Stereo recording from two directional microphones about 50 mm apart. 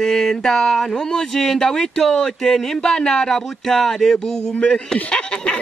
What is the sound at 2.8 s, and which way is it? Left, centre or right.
Speech, centre.